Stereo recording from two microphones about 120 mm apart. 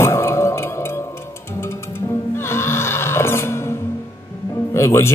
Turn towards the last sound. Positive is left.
turn(degrees=20)  # may be behind; listen again after turning